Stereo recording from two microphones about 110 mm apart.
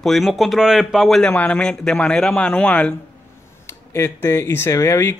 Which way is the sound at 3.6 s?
25° left (ahead or behind).